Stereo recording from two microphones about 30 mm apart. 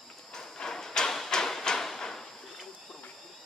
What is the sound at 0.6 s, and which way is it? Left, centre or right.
Hammer, centre.